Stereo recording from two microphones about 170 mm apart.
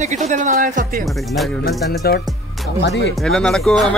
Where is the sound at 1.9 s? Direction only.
65° left (ahead or behind).